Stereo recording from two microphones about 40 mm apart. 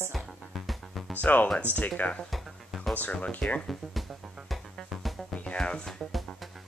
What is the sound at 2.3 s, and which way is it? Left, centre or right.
Music, centre.